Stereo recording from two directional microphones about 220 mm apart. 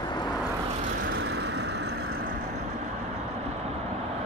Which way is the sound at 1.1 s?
55° right (ahead or behind).